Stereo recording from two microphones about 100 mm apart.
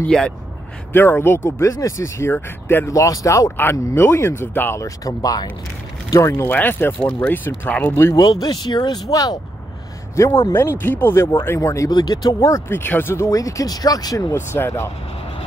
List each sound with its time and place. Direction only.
0.0 s speech: 10° left (ahead or behind)
0.9 s speech: 20° left (ahead or behind)
2.9 s speech: 35° left (ahead or behind); by 7.9 s 20° left (ahead or behind)
7.9 s speech: 30° left (ahead or behind)
11.9 s speech: 40° left (ahead or behind)
14.3 s speech: 25° left (ahead or behind)